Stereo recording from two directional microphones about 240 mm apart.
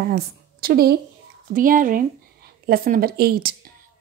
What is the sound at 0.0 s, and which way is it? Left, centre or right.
A woman's voice, right.